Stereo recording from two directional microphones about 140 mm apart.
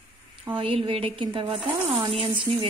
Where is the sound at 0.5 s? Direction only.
40° right (ahead or behind).